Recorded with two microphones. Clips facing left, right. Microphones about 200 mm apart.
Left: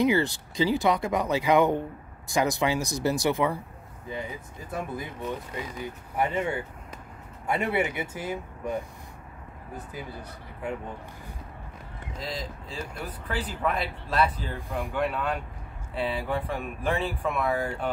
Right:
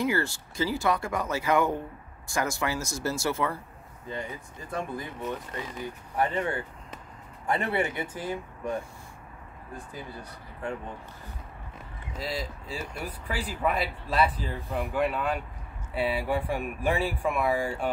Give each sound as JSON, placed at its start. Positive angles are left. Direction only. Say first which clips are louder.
{"t": 0.0, "sound": "speech", "louder": "left 4 dB", "side_deg": 20}
{"t": 12.2, "sound": "speech", "louder": "right 2 dB", "side_deg": -5}